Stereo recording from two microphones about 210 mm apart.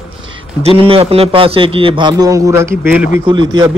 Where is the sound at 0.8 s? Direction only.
25° right (ahead or behind); by 3.0 s 10° right (ahead or behind).